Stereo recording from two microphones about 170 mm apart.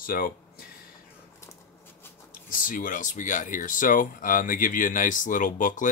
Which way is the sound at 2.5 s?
55° left (ahead or behind).